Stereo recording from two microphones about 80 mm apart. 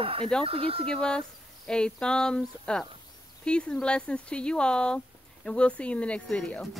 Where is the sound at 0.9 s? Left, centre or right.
Centre.